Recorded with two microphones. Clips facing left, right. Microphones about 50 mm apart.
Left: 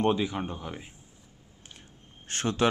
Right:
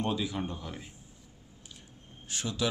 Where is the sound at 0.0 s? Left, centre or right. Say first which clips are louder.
Left 5 dB; left.